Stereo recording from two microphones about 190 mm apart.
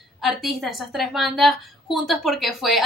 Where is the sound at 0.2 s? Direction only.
Centre (ahead or behind).